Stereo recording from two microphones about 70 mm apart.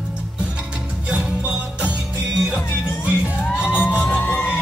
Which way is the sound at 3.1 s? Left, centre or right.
Centre.